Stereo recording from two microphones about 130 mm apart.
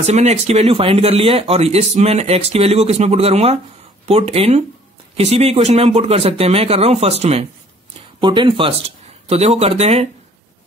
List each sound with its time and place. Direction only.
0.0 s speech: 55° right (ahead or behind)
8.2 s speech: 40° right (ahead or behind)